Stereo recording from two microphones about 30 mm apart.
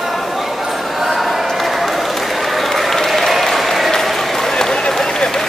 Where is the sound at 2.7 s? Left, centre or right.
Centre.